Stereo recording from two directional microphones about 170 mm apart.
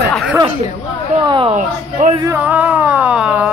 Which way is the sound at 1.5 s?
45° right (ahead or behind).